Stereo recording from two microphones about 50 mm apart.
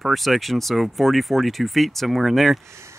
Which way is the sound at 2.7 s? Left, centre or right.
Right.